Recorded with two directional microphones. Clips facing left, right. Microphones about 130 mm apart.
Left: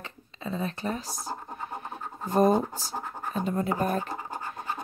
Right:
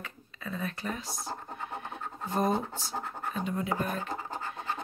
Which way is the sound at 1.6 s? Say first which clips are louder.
Left 2 dB; 35° left (ahead or behind).